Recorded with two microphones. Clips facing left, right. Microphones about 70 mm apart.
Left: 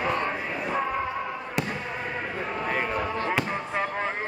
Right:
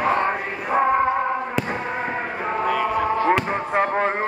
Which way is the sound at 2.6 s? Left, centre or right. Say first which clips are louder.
Right 7 dB; right.